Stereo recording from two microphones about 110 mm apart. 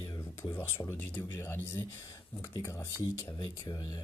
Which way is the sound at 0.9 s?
20° left (ahead or behind).